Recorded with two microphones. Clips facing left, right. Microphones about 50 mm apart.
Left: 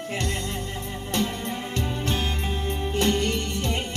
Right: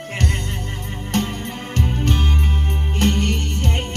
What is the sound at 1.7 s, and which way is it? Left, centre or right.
Music, right.